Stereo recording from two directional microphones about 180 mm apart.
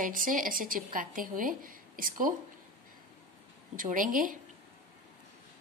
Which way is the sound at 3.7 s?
50° right (ahead or behind).